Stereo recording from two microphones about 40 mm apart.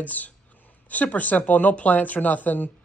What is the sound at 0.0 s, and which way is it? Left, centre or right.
Speech, left.